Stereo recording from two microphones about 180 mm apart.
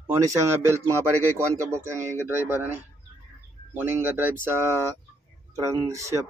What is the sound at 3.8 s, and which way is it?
Speech, 10° right (ahead or behind).